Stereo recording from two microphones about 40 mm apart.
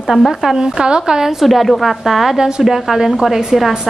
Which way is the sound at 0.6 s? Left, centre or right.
Right.